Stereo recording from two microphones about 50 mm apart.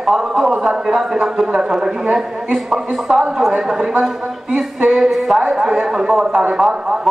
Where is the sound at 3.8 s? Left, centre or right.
Right.